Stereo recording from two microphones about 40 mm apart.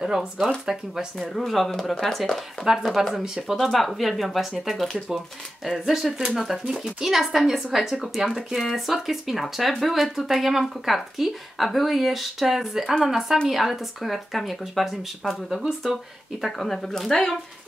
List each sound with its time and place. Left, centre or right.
0.0 s a woman's voice: centre
1.1 s speech: centre
3.2 s a woman's voice: centre
3.6 s a woman's voice: centre
15.2 s speech: centre
15.8 s speech: centre
16.4 s speech: centre